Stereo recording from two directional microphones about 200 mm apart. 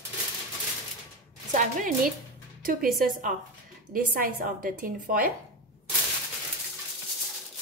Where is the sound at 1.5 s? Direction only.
40° right (ahead or behind).